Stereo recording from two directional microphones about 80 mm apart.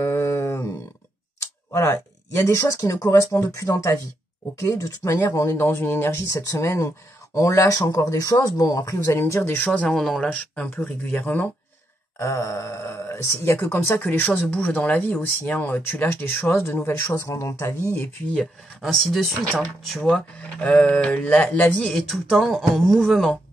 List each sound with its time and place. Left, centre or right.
0.0 s a sound: left
2.4 s speech: left
5.1 s speech: left
9.0 s speech: left
9.7 s speech: centre
12.2 s speech: left
17.9 s speech: left
18.8 s speech: centre
21.7 s speech: centre